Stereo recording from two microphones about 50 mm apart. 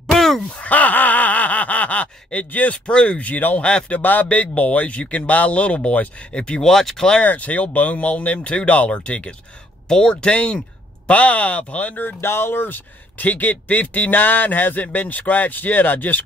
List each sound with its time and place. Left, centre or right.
0.1 s a sound: centre
0.5 s gasp: left
3.6 s speech: left
4.0 s speech: left; by 6.7 s centre
6.7 s speech: centre
7.2 s speech: left
12.2 s speech: left